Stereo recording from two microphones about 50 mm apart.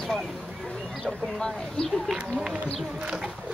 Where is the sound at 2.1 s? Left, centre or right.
Centre.